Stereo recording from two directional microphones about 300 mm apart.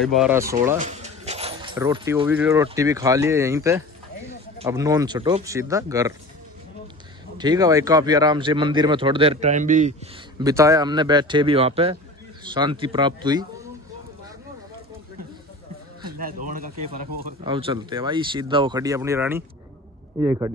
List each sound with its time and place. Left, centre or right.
0.0 s speech: centre
0.7 s a sound: right
1.8 s speech: centre
7.3 s speech: centre
10.4 s speech: centre
16.1 s speech: right
17.4 s speech: centre